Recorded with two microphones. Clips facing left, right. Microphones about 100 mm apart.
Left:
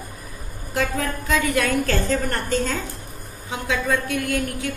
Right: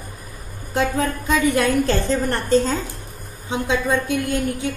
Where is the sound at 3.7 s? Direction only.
20° right (ahead or behind).